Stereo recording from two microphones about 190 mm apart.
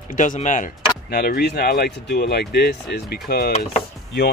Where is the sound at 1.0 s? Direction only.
55° left (ahead or behind).